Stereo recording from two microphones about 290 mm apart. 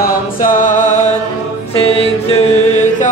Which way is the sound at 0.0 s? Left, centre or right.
Left.